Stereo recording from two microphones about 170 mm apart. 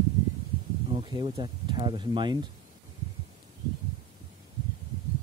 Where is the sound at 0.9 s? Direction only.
30° right (ahead or behind).